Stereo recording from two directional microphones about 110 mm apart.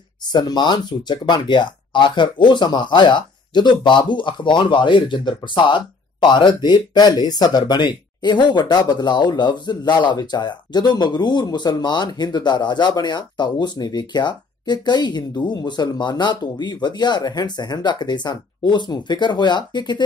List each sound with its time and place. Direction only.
0.3 s speech: 40° left (ahead or behind)